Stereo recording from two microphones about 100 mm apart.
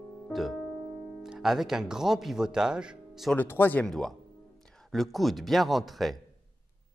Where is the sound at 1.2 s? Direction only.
5° right (ahead or behind).